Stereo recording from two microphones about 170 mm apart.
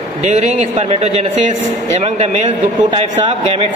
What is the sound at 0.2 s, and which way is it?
A man's voice, 45° right (ahead or behind).